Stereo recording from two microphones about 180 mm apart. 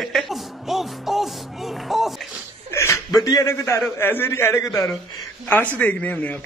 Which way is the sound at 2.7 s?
15° left (ahead or behind).